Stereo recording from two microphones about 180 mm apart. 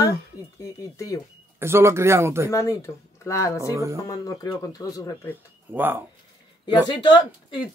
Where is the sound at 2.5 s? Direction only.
15° left (ahead or behind).